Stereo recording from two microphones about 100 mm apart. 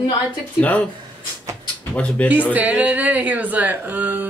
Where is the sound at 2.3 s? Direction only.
15° right (ahead or behind).